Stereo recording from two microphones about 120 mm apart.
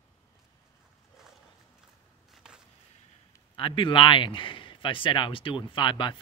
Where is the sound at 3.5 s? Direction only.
45° left (ahead or behind).